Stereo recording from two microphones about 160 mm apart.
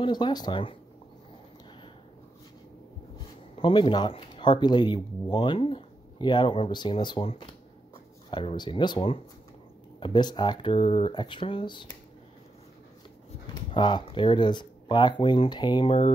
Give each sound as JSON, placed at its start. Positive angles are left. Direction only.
{"t": 0.0, "sound": "speech", "side_deg": 25}
{"t": 3.5, "sound": "speech", "side_deg": 35}
{"t": 13.7, "sound": "speech", "side_deg": 30}